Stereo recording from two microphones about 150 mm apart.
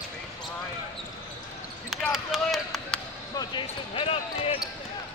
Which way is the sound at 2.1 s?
5° right (ahead or behind).